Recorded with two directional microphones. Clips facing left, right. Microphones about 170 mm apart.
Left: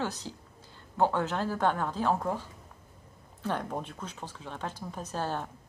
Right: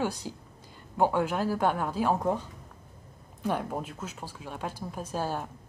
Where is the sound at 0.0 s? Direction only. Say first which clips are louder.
Right 3 dB; 10° right (ahead or behind).